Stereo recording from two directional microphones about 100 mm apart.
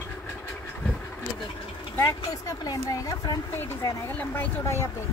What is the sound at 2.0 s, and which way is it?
A woman's voice, 30° left (ahead or behind).